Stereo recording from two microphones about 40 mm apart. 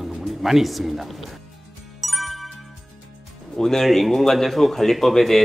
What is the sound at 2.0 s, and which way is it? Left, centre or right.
Music, centre.